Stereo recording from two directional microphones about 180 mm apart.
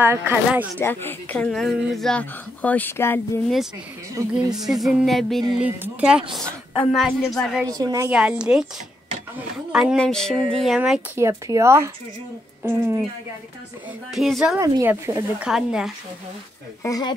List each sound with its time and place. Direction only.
0.0 s speech: 10° right (ahead or behind)
0.7 s speech: 10° left (ahead or behind)
4.2 s speech: 15° right (ahead or behind)
4.6 s speech: centre (ahead or behind)
7.6 s a woman's voice: 20° right (ahead or behind)
8.1 s speech: 5° right (ahead or behind)
9.7 s speech: 5° right (ahead or behind)
11.1 s speech: 15° right (ahead or behind)
14.1 s speech: centre (ahead or behind)
14.6 s speech: 15° right (ahead or behind)
15.4 s speech: 5° right (ahead or behind)
16.8 s speech: 20° left (ahead or behind)